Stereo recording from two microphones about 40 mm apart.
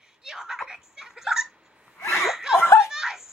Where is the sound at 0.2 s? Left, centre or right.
Centre.